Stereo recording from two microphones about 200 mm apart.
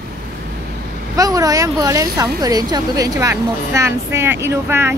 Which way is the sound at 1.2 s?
15° right (ahead or behind).